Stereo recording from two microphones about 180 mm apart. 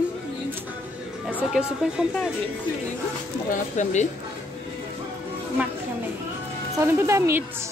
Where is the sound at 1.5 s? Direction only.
5° right (ahead or behind).